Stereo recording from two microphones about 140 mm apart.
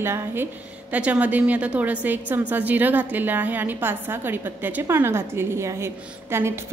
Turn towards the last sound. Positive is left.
turn(degrees=-20)  # may be behind; listen again after turning